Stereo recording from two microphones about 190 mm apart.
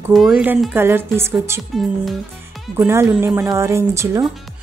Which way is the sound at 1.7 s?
Centre (ahead or behind).